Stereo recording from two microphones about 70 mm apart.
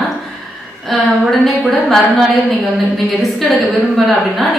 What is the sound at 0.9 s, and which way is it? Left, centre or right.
A woman's voice, centre.